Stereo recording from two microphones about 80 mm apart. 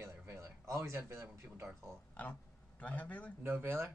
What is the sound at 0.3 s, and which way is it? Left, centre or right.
Speech, right.